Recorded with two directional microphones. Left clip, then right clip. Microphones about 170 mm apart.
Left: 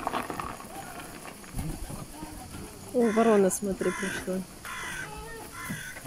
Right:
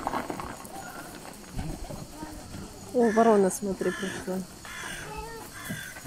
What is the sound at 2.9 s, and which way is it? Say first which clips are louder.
Speech: right 2 dB; 15° left (ahead or behind).